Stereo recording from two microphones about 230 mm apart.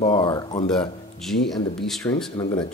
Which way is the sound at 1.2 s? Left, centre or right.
Centre.